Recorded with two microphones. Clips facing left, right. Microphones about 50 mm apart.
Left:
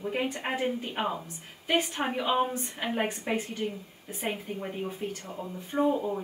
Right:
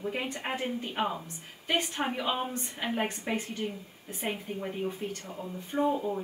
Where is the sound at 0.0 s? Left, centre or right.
Centre.